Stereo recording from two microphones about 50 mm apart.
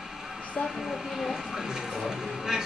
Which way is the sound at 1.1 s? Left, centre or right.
Centre.